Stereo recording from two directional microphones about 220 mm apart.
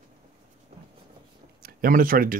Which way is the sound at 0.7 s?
30° right (ahead or behind).